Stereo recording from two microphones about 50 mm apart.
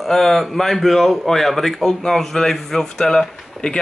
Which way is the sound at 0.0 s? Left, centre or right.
Centre.